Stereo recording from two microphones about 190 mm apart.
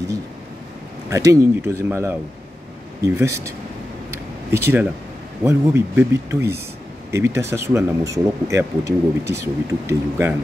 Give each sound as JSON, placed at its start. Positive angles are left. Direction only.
{"t": 1.1, "sound": "speech", "side_deg": -15}
{"t": 4.1, "sound": "a sound", "side_deg": -15}
{"t": 5.4, "sound": "speech", "side_deg": -15}